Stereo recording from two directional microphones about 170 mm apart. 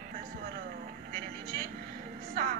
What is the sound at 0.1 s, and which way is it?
Vehicle, 55° right (ahead or behind).